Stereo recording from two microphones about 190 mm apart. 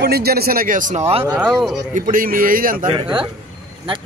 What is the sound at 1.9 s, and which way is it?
Speech, 45° right (ahead or behind).